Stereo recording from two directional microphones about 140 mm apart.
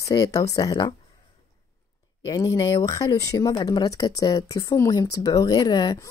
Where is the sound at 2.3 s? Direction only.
25° left (ahead or behind).